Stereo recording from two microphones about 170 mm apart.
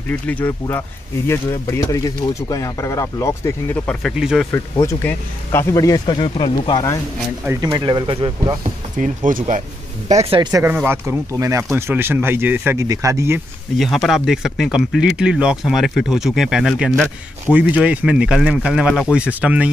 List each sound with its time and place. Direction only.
0.1 s speech: 10° left (ahead or behind)
4.1 s speech: 5° right (ahead or behind)
4.8 s speech: 15° left (ahead or behind)
7.4 s speech: 25° right (ahead or behind)
8.9 s speech: 50° right (ahead or behind)
10.1 s speech: 30° right (ahead or behind)
10.5 s speech: 10° right (ahead or behind)
13.7 s speech: centre (ahead or behind)